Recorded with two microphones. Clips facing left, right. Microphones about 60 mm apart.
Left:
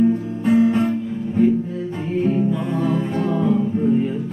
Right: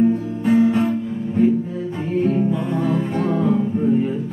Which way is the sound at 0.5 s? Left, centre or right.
Centre.